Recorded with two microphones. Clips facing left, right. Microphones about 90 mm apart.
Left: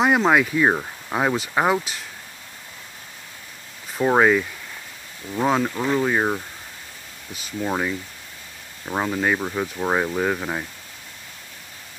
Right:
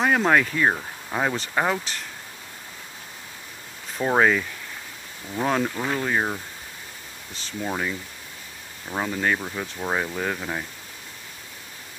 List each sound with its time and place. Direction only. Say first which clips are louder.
0.3 s speech: left 2 dB; 10° left (ahead or behind)
4.0 s speech: left 3 dB; 5° left (ahead or behind)
7.3 s speech: left 4 dB; 10° left (ahead or behind)